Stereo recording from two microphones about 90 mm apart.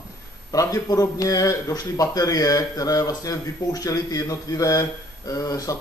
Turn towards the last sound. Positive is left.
turn(degrees=40)  # may be behind; listen again after turning